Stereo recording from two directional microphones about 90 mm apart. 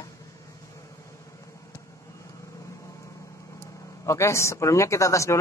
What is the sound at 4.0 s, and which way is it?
A man's voice, 35° left (ahead or behind).